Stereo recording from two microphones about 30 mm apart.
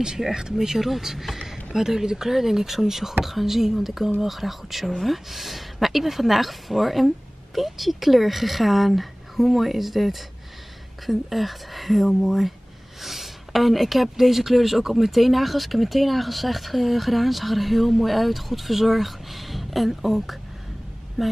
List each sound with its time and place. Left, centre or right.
0.3 s speech: centre
1.7 s speech: centre